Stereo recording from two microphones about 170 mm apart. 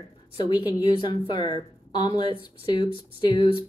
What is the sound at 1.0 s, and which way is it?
A woman's voice, 30° left (ahead or behind).